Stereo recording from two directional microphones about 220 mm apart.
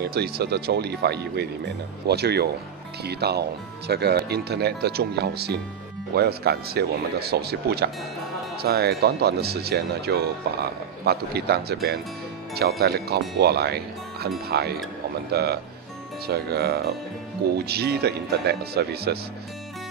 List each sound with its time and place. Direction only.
0.0 s speech: 45° right (ahead or behind)